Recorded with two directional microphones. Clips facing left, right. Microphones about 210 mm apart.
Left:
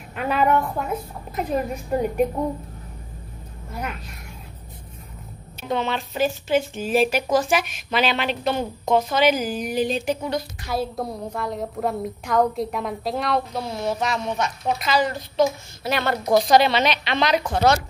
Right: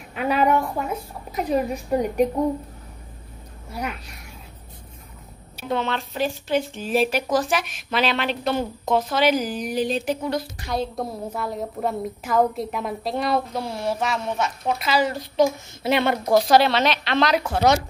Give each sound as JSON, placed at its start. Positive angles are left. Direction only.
{"t": 0.1, "sound": "speech", "side_deg": 0}
{"t": 3.7, "sound": "speech", "side_deg": 0}
{"t": 5.7, "sound": "speech", "side_deg": 0}
{"t": 15.8, "sound": "a woman's voice", "side_deg": -25}
{"t": 16.3, "sound": "speech", "side_deg": -5}